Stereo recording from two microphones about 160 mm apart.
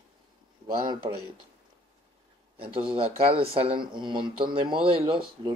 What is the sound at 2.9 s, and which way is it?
Speech, 35° right (ahead or behind).